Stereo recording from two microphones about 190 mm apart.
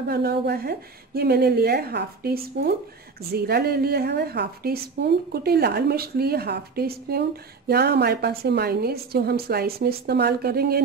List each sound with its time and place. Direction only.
0.1 s speech: 55° right (ahead or behind)